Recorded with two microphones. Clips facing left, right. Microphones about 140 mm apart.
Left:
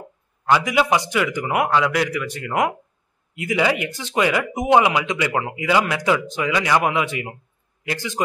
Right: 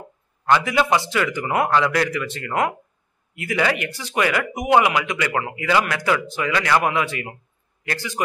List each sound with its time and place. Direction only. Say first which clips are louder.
0.5 s a man's voice: even; 10° left (ahead or behind)